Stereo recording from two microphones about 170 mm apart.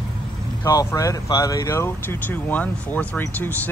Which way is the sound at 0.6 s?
20° left (ahead or behind).